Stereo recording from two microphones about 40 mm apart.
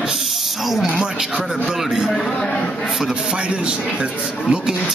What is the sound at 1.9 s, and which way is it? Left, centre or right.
Speech, centre.